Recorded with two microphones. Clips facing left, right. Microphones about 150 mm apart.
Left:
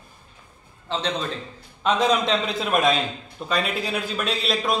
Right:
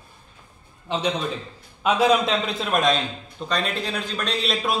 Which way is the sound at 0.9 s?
15° right (ahead or behind).